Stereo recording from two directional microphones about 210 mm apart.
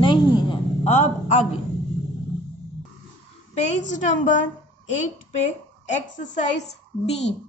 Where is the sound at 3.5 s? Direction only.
30° left (ahead or behind).